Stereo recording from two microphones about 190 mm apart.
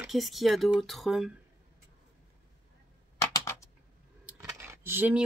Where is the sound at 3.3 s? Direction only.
15° left (ahead or behind).